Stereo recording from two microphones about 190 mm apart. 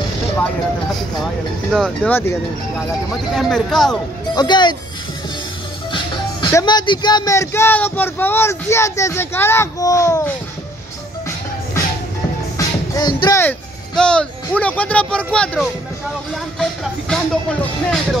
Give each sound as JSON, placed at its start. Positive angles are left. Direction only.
{"t": 1.7, "sound": "speech", "side_deg": 5}
{"t": 3.3, "sound": "speech", "side_deg": 0}
{"t": 4.4, "sound": "speech", "side_deg": 25}
{"t": 6.4, "sound": "speech", "side_deg": 20}
{"t": 12.5, "sound": "speech", "side_deg": 20}
{"t": 17.1, "sound": "speech", "side_deg": 5}